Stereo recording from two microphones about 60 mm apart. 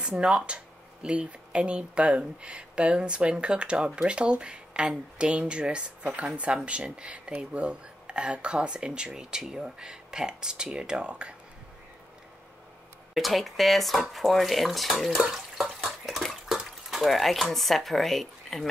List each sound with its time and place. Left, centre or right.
0.2 s speech: centre
13.1 s speech: centre
16.1 s bathtub: centre